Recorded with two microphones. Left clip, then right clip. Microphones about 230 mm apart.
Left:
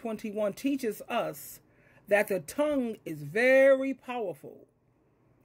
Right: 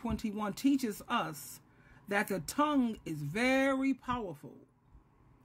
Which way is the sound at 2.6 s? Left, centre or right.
Centre.